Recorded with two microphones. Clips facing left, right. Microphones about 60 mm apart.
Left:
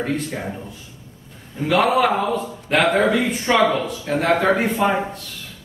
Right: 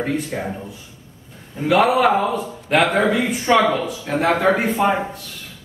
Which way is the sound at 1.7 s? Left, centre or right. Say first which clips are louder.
Right 2 dB; centre.